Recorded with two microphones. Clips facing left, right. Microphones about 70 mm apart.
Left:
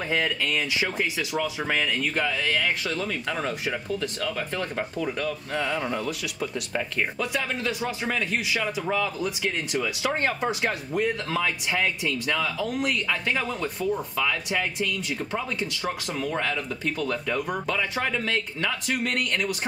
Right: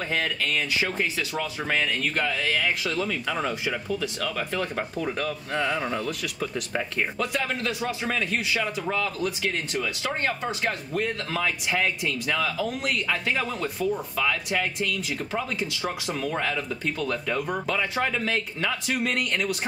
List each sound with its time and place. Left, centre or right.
0.1 s speech: centre
5.5 s speech: centre